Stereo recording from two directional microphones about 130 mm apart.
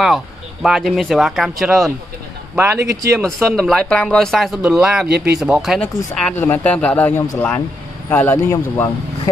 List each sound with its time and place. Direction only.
0.0 s speech: centre (ahead or behind)
2.5 s speech: 20° right (ahead or behind)
3.2 s speech: 5° left (ahead or behind)
6.1 s a man's voice: 10° left (ahead or behind)